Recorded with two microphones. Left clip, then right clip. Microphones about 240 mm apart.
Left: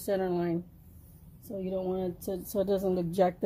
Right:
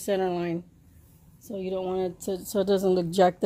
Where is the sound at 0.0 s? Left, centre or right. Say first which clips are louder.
Right 3 dB; right.